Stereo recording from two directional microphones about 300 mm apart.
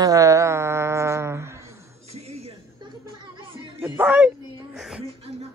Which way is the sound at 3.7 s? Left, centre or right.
Centre.